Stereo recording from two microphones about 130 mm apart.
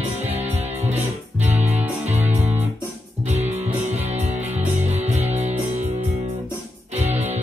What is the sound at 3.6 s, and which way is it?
Music, 60° right (ahead or behind).